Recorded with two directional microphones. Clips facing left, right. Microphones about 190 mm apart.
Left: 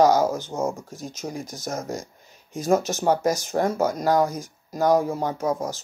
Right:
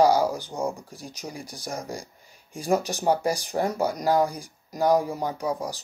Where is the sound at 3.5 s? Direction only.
50° left (ahead or behind).